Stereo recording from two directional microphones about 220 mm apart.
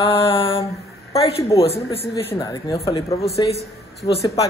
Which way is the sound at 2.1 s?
15° left (ahead or behind).